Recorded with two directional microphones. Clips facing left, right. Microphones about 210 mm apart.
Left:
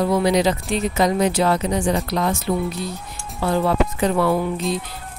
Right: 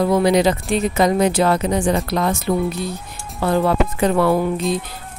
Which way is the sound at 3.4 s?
55° right (ahead or behind).